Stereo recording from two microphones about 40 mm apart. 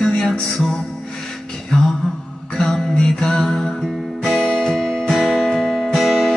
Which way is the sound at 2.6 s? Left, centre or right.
Centre.